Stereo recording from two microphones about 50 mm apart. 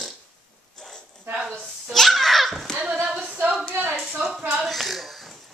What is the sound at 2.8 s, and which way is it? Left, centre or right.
Female singing, right.